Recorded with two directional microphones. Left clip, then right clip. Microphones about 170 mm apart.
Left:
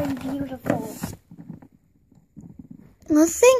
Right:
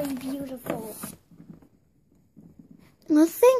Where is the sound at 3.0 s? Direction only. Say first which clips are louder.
Left 3 dB; 10° right (ahead or behind).